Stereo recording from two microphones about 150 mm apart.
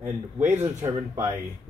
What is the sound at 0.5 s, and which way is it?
Speech, 15° right (ahead or behind).